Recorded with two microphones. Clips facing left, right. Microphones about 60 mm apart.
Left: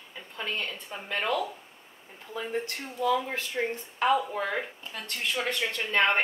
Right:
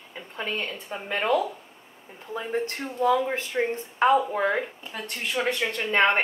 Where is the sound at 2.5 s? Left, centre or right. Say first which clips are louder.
Right 6 dB; right.